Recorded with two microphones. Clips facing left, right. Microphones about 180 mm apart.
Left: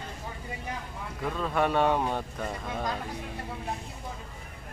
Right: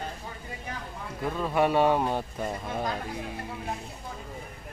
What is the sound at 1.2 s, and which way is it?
Speech, 5° right (ahead or behind).